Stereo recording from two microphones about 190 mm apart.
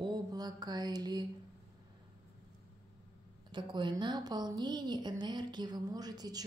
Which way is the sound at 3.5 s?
25° right (ahead or behind).